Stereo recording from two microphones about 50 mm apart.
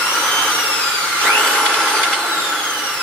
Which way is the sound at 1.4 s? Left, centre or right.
Centre.